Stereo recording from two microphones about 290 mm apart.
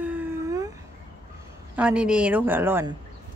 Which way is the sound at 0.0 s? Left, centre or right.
Centre.